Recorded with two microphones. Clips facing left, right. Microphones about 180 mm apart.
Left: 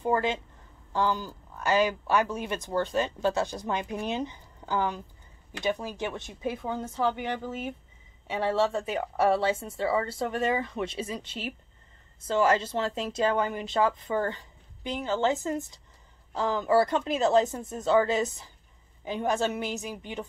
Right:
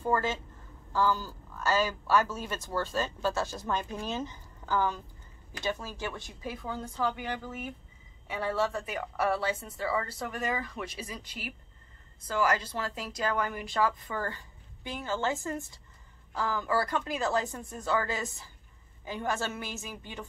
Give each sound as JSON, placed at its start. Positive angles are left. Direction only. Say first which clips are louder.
{"t": 0.0, "sound": "a woman's voice", "louder": "left 3 dB", "side_deg": 15}